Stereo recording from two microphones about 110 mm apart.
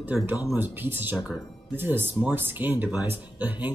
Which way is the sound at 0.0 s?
15° right (ahead or behind).